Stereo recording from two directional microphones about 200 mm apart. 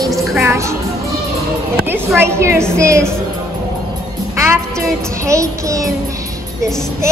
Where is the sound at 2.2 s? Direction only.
15° right (ahead or behind).